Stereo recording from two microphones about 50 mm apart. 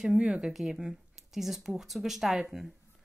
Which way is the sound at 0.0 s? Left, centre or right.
Centre.